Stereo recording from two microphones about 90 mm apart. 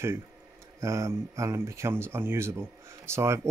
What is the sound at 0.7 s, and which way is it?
Speech, 35° right (ahead or behind).